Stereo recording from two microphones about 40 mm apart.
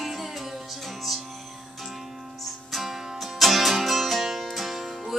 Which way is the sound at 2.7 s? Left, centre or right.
Centre.